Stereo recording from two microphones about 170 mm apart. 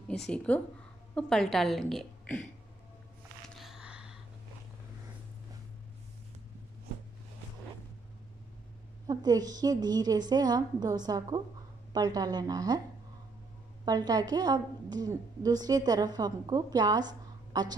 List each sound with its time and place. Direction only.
0.5 s a woman's voice: 10° left (ahead or behind)
3.5 s a sound: centre (ahead or behind)
9.0 s a woman's voice: 20° right (ahead or behind)
13.8 s a woman's voice: 20° right (ahead or behind)